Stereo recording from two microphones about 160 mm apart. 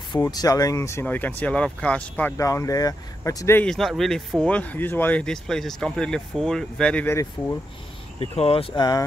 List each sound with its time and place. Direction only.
0.1 s speech: 25° left (ahead or behind)
3.6 s speech: centre (ahead or behind)
8.2 s speech: 35° left (ahead or behind)